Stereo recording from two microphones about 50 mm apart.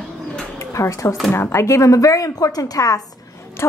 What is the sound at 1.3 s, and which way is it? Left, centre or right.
Speech, left.